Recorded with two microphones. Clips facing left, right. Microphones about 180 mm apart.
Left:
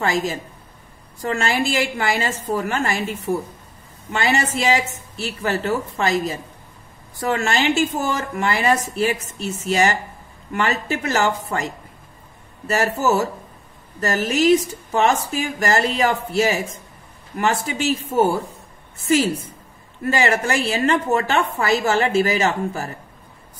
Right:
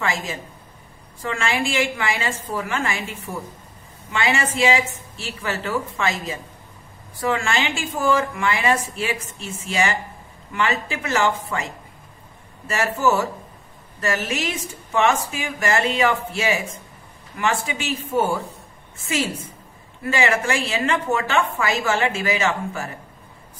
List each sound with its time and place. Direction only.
0.0 s a woman's voice: 40° left (ahead or behind)
12.6 s a woman's voice: 40° left (ahead or behind)
20.0 s a woman's voice: 35° left (ahead or behind)